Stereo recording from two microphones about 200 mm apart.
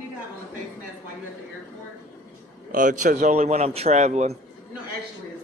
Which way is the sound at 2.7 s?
40° right (ahead or behind).